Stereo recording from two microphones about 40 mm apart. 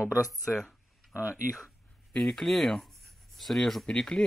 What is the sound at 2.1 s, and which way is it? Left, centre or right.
Speech, centre.